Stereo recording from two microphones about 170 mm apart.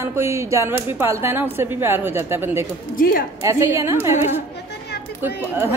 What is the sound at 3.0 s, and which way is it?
Speech, 55° left (ahead or behind).